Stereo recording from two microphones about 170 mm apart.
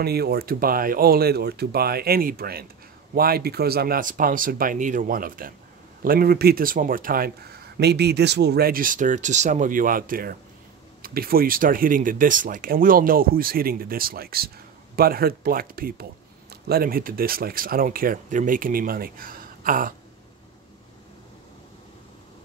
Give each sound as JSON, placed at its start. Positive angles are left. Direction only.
{"t": 0.0, "sound": "speech", "side_deg": -70}